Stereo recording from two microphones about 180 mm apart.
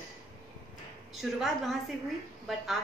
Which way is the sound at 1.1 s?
Centre (ahead or behind).